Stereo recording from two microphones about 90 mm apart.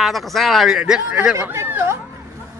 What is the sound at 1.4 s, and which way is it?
Speech, 30° right (ahead or behind).